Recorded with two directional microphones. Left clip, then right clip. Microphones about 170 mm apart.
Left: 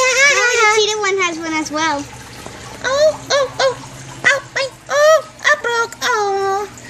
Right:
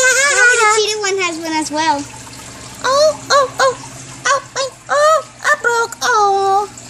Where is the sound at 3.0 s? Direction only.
30° right (ahead or behind).